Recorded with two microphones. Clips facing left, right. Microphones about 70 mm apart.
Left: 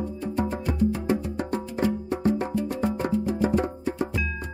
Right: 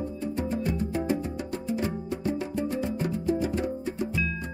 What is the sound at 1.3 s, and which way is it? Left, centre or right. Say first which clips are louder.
Music: left 2 dB; left.